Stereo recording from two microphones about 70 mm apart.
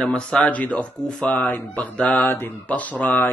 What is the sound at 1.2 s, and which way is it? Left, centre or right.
Speech, left.